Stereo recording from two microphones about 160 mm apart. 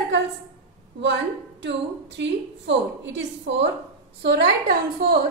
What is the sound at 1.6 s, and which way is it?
A woman's voice, 90° right.